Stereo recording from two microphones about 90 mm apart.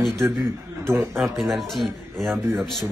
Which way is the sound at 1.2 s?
Centre (ahead or behind).